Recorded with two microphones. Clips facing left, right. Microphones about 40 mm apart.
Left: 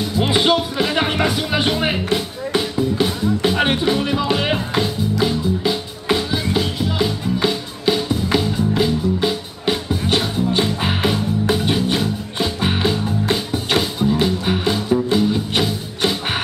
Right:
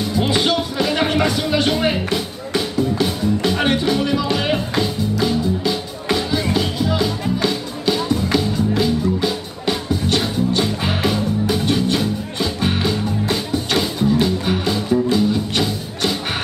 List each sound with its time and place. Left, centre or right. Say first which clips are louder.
0.2 s music: left 3 dB; centre